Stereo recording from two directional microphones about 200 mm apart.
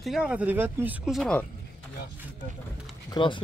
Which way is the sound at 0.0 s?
5° right (ahead or behind).